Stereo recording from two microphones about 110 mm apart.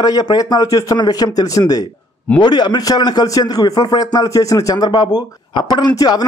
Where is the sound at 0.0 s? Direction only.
35° left (ahead or behind).